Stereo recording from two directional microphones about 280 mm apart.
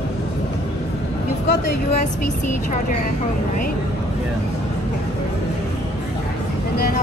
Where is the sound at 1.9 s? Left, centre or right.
Left.